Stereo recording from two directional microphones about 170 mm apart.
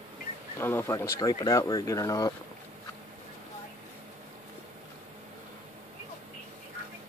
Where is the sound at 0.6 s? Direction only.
15° left (ahead or behind).